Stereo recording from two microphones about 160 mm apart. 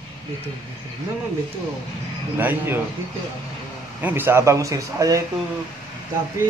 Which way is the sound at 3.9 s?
10° right (ahead or behind).